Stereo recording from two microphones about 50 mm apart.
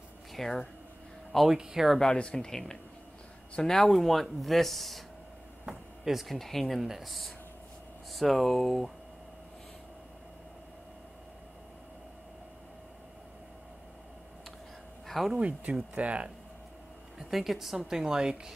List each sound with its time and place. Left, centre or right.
0.3 s a sound: centre
1.5 s speech: centre
2.1 s speech: centre
6.3 s speech: centre
15.0 s speech: centre
15.3 s speech: right
17.2 s speech: centre